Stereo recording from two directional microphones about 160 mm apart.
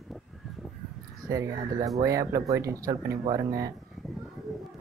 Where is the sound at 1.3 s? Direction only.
20° right (ahead or behind).